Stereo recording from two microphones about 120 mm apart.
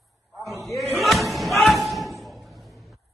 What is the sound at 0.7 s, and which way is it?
Slam, centre (ahead or behind).